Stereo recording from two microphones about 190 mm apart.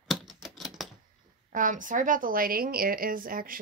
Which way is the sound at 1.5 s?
45° right (ahead or behind).